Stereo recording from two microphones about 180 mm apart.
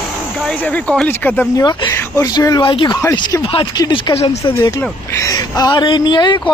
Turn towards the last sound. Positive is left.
turn(degrees=25)  # may be behind; listen again after turning